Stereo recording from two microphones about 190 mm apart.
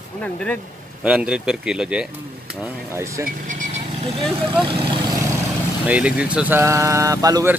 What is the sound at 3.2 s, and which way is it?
Speech, 40° right (ahead or behind).